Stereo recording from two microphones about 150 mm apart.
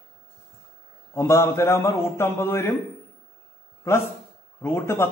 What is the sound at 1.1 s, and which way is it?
A man's voice, 20° left (ahead or behind).